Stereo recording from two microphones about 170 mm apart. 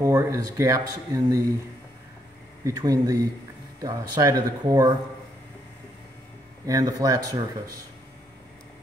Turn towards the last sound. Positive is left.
turn(degrees=-25)  # may be behind; listen again after turning